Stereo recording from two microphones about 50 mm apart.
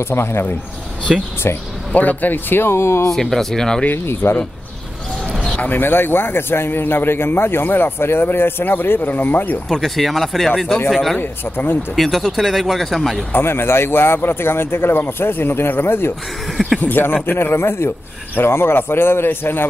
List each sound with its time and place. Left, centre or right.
0.0 s a man's voice: left
1.1 s speech: centre
2.0 s speech: left
2.8 s speech: left
3.2 s speech: centre
3.9 s a man's voice: left
5.6 s a man's voice: left
9.7 s speech: centre
11.1 s a man's voice: left
11.9 s speech: centre
13.3 s a man's voice: left
16.5 s speech: centre
16.8 s a man's voice: left